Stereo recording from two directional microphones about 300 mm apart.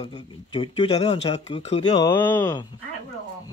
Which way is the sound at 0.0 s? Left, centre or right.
Centre.